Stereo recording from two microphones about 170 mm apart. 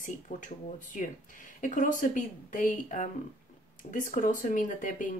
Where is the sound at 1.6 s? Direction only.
50° left (ahead or behind).